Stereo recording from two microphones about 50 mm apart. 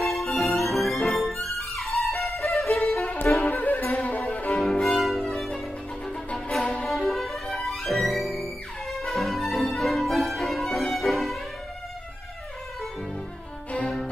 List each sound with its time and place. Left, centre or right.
0.0 s music: centre
3.3 s music: left
4.6 s music: centre